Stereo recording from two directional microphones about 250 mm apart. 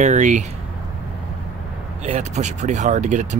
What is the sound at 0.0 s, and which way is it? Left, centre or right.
Speech, right.